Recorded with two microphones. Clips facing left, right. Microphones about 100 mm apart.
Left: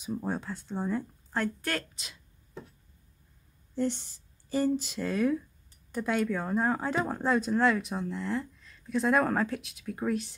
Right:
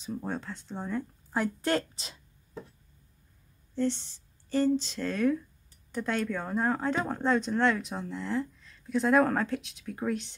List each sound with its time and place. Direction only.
0.0 s speech: 10° left (ahead or behind)
1.6 s speech: 25° right (ahead or behind)
3.7 s speech: 10° left (ahead or behind)